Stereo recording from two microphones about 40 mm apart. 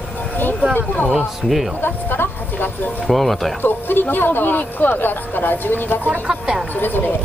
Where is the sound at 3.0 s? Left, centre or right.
Centre.